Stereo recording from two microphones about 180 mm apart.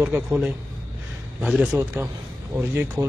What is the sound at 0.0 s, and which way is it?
A man's voice, 10° right (ahead or behind).